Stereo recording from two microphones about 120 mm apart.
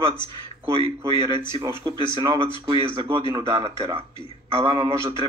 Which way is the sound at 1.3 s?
25° right (ahead or behind).